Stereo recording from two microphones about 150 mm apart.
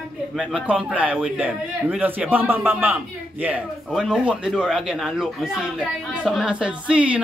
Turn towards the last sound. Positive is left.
turn(degrees=-10)  # may be behind; listen again after turning